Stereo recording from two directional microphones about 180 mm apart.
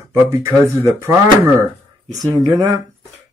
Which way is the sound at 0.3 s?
15° right (ahead or behind).